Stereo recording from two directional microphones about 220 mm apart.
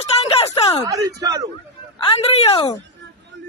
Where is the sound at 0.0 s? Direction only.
25° left (ahead or behind).